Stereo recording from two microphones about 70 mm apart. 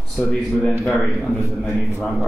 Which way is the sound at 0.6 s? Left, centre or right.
Centre.